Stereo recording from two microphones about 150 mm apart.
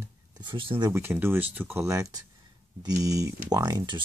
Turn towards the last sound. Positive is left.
turn(degrees=-30)  # may be behind; listen again after turning